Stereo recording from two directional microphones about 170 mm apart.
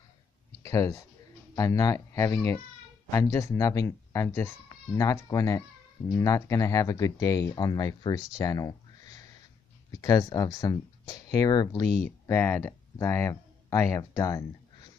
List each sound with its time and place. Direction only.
0.7 s speech: 20° left (ahead or behind)
8.4 s a sound: 20° left (ahead or behind)
9.9 s speech: 20° left (ahead or behind)